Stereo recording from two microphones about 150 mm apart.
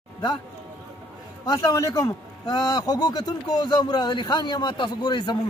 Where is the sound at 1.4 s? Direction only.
25° left (ahead or behind).